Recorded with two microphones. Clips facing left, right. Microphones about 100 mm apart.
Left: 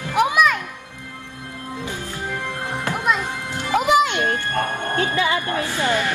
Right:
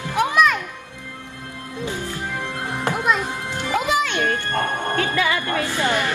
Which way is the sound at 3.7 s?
20° left (ahead or behind).